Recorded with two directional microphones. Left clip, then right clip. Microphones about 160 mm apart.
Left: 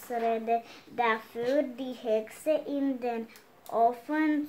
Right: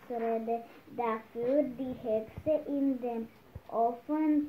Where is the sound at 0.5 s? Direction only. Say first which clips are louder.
Left 6 dB; 25° left (ahead or behind).